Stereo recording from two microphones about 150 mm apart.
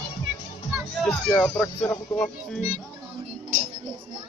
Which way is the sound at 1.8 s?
20° left (ahead or behind).